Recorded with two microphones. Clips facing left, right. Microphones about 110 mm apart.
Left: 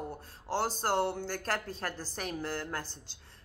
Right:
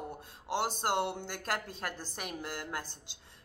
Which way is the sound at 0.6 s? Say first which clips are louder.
Left 2 dB; 20° right (ahead or behind).